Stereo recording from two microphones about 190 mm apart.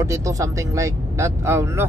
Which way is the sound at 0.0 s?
15° right (ahead or behind).